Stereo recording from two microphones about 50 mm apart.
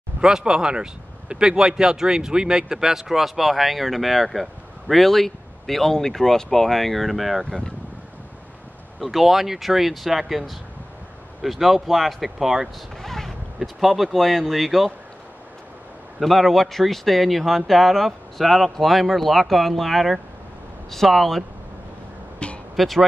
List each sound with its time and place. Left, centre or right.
0.2 s speech: centre
7.4 s speech: centre
9.0 s speech: centre
12.9 s speech: centre
16.2 s speech: centre
22.4 s a sound: left
22.8 s speech: centre